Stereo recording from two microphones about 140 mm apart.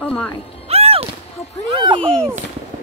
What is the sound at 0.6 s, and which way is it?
Music, 45° right (ahead or behind).